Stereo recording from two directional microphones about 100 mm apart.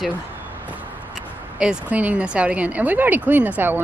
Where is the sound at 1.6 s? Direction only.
10° right (ahead or behind).